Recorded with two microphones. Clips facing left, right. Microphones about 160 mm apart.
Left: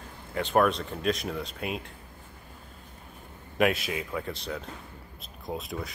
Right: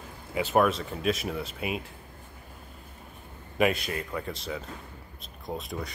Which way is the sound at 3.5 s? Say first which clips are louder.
Even; centre (ahead or behind).